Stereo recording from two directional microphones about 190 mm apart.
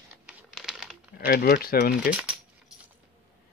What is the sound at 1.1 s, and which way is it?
Speech, 50° left (ahead or behind).